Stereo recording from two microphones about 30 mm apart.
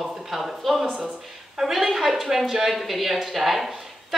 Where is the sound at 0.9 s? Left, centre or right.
Right.